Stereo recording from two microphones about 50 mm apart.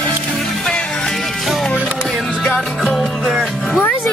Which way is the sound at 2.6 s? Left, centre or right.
Centre.